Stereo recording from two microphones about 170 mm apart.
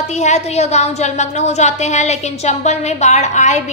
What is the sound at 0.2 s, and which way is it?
A woman's voice, 40° left (ahead or behind).